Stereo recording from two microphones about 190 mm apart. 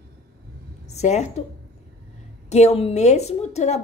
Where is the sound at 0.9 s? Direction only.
35° left (ahead or behind).